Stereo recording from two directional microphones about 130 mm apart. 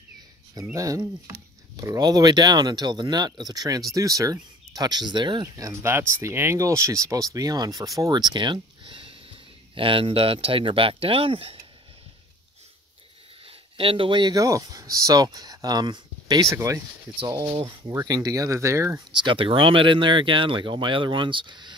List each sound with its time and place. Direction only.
0.7 s speech: 25° right (ahead or behind); by 11.5 s 45° right (ahead or behind)
13.5 s speech: 45° right (ahead or behind)
16.5 s speech: 20° right (ahead or behind)
17.6 s speech: 30° right (ahead or behind)
19.1 s speech: 40° right (ahead or behind)